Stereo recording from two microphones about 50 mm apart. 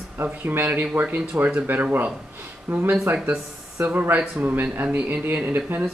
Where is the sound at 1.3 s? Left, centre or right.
Right.